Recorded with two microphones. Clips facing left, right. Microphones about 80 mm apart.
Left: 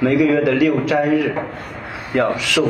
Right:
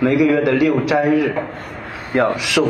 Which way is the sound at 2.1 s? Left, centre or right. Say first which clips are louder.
Right 1 dB; centre.